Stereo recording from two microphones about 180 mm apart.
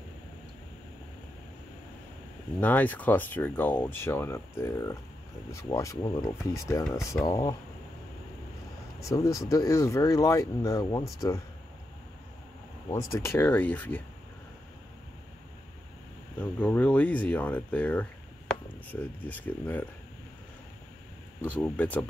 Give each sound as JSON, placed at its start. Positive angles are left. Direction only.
{"t": 2.6, "sound": "speech", "side_deg": 10}
{"t": 9.0, "sound": "speech", "side_deg": 15}
{"t": 12.9, "sound": "speech", "side_deg": 15}
{"t": 16.3, "sound": "speech", "side_deg": 10}
{"t": 21.5, "sound": "speech", "side_deg": 10}